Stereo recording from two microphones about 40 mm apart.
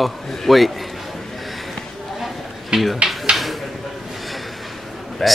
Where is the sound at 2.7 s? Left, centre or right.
Centre.